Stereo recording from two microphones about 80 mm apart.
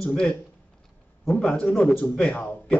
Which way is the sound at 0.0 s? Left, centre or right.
Centre.